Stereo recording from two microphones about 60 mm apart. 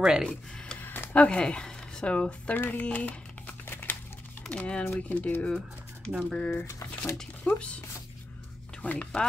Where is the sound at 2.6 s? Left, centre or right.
Left.